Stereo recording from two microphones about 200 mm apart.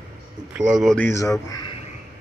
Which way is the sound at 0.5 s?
5° right (ahead or behind).